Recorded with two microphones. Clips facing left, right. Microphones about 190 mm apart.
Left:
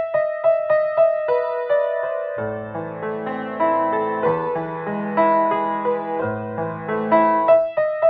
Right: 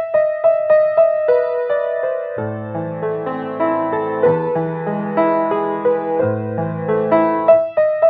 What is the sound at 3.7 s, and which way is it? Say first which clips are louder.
Music: right 3 dB; 50° right (ahead or behind).